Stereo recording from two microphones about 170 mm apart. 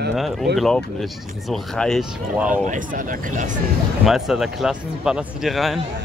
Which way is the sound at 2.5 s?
50° right (ahead or behind).